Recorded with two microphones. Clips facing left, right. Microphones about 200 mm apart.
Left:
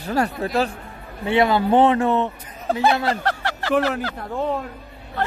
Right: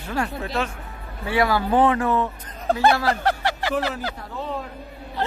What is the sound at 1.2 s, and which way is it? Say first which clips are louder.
A man's voice: left 3 dB; 25° left (ahead or behind).